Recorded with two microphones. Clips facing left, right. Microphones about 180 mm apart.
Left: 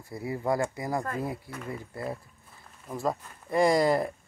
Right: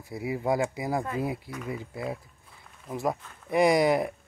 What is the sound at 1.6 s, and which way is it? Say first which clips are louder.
Speech: right 1 dB; 5° right (ahead or behind).